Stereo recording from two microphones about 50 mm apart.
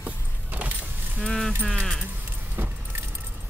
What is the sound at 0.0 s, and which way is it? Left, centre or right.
Vehicle, right.